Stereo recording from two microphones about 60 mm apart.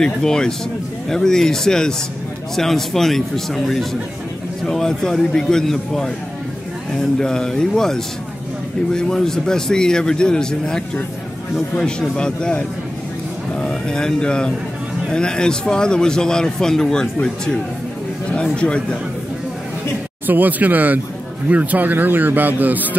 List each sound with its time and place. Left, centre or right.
0.0 s a man's voice: centre
12.2 s a man's voice: centre
18.3 s a man's voice: centre
20.2 s a man's voice: right